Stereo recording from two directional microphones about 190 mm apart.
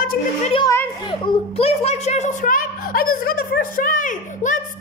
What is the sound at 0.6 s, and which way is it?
A child's voice, 20° left (ahead or behind).